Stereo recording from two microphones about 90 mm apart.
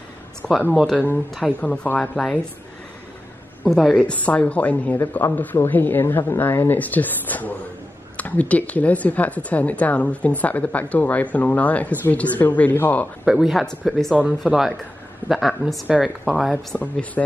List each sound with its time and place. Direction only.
0.4 s speech: 10° left (ahead or behind)
3.6 s speech: 5° left (ahead or behind)
4.0 s speech: 15° left (ahead or behind)
13.2 s speech: 5° right (ahead or behind)
15.2 s speech: centre (ahead or behind)
16.7 s speech: 10° left (ahead or behind)